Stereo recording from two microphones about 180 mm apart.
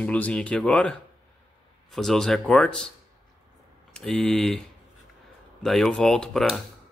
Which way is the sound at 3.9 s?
5° left (ahead or behind).